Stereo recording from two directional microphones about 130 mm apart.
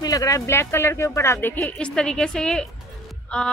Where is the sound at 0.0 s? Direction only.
25° left (ahead or behind).